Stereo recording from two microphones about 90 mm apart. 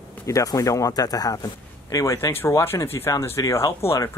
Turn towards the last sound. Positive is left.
turn(degrees=30)  # may be behind; listen again after turning